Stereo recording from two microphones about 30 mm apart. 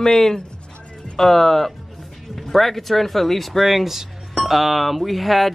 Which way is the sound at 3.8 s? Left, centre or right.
Centre.